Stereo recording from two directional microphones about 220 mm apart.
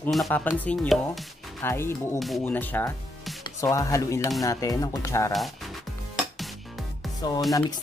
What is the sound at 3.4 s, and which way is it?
Speech, 15° left (ahead or behind).